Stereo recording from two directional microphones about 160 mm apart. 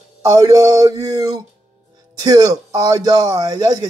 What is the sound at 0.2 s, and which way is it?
Speech, 20° right (ahead or behind).